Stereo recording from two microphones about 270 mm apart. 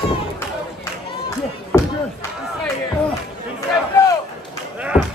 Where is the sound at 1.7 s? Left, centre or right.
Centre.